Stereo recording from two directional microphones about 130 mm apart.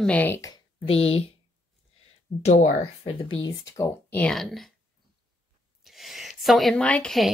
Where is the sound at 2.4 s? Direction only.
60° left (ahead or behind).